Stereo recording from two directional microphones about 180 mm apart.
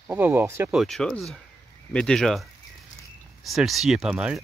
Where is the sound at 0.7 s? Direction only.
Centre (ahead or behind).